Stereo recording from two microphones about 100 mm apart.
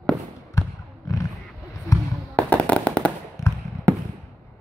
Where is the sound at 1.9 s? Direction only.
30° left (ahead or behind).